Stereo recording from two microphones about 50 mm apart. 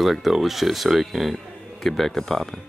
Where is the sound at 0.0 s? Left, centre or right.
Centre.